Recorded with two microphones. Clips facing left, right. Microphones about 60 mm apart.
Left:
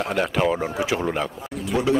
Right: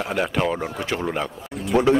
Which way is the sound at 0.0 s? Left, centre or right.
Centre.